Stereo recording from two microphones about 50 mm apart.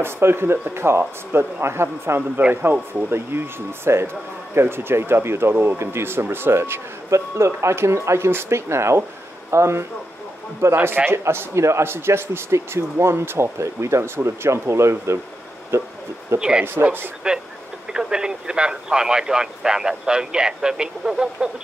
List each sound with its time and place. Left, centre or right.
0.0 s a man's voice: right
5.8 s speech: right
7.1 s a man's voice: right
15.7 s a man's voice: right
16.3 s speech: centre